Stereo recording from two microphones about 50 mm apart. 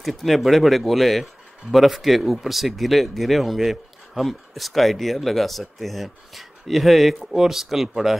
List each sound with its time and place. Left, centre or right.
0.0 s speech: centre